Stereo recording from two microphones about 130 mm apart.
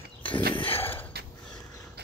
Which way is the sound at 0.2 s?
40° left (ahead or behind).